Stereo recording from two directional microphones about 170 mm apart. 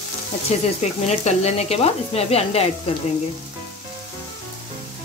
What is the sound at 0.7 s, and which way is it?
Sizzle, 40° left (ahead or behind).